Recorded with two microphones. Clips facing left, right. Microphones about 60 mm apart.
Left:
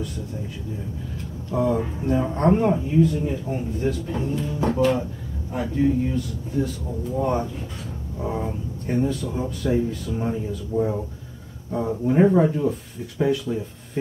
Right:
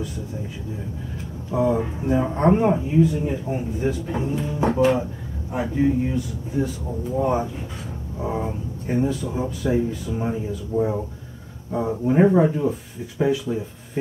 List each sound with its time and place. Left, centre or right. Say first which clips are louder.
1.5 s speech: right 1 dB; centre
10.7 s speech: right 1 dB; right
11.7 s speech: right 1 dB; centre